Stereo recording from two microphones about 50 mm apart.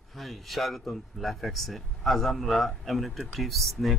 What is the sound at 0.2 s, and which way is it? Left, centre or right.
Speech, centre.